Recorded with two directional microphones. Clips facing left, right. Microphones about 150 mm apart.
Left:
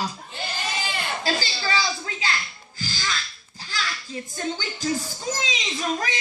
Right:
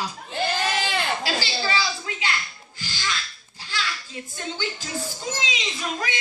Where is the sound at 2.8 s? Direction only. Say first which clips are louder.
Left 1 dB; 40° left (ahead or behind).